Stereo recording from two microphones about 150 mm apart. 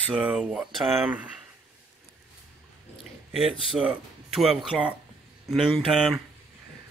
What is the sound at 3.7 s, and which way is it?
Speech, 5° right (ahead or behind).